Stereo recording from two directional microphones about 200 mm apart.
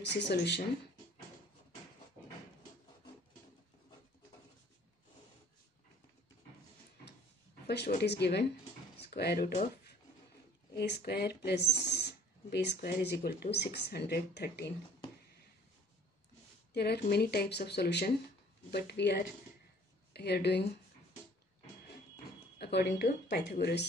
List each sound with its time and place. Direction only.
0.0 s speech: 60° left (ahead or behind)
7.6 s speech: 55° left (ahead or behind)
10.8 s speech: 55° left (ahead or behind)
16.7 s speech: 55° left (ahead or behind)
22.6 s speech: 55° left (ahead or behind)